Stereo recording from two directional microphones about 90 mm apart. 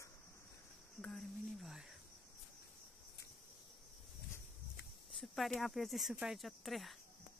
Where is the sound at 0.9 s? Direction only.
5° left (ahead or behind).